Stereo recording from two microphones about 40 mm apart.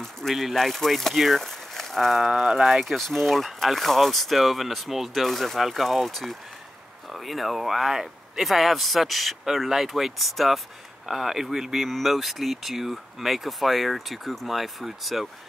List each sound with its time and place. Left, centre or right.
0.3 s speech: centre
1.4 s a sound: centre
2.1 s speech: centre
2.8 s speech: centre